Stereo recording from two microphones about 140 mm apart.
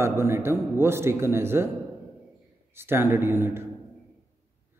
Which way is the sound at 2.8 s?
15° right (ahead or behind).